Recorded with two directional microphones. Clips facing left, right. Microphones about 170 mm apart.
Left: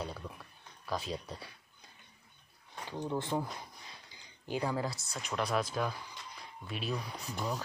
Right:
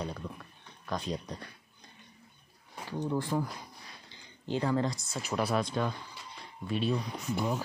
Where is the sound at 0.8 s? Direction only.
5° left (ahead or behind).